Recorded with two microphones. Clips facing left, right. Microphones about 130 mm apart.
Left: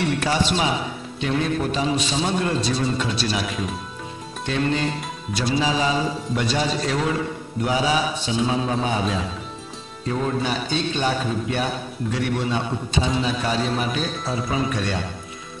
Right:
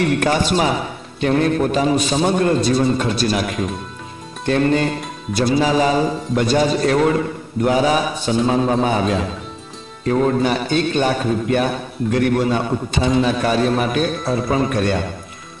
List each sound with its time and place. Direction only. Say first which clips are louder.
0.0 s a man's voice: right 5 dB; 55° right (ahead or behind)